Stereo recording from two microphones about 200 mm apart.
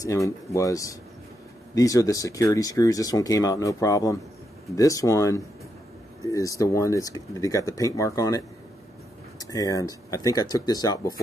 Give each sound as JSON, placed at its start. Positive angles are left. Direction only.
{"t": 0.0, "sound": "speech", "side_deg": 15}